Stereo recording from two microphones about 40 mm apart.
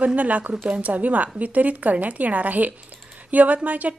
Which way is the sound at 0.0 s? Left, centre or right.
Right.